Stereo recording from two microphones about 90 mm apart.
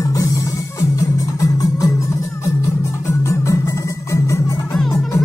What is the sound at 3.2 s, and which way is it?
Music, 35° left (ahead or behind).